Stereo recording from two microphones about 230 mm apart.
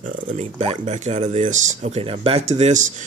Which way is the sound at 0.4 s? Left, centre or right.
Right.